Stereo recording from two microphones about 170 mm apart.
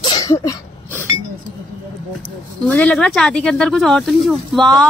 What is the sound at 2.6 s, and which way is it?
Speech, 5° left (ahead or behind).